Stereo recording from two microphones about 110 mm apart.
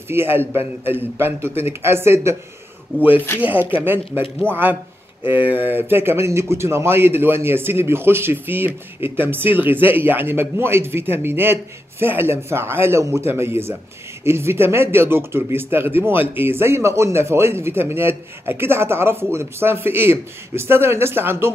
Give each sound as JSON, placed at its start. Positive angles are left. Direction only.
{"t": 0.1, "sound": "speech", "side_deg": -20}